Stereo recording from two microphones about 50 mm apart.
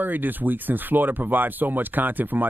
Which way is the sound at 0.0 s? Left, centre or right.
Right.